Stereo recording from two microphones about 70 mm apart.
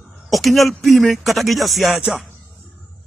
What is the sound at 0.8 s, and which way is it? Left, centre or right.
Speech, centre.